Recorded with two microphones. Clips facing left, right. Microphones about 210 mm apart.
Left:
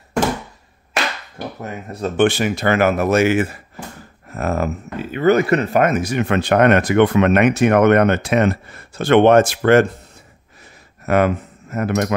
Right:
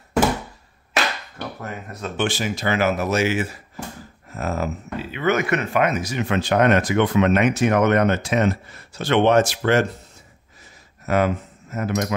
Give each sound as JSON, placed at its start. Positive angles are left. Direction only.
{"t": 1.0, "sound": "a sound", "side_deg": 0}
{"t": 1.9, "sound": "speech", "side_deg": 35}
{"t": 2.1, "sound": "speech", "side_deg": 60}
{"t": 4.9, "sound": "speech", "side_deg": 40}
{"t": 11.1, "sound": "speech", "side_deg": 60}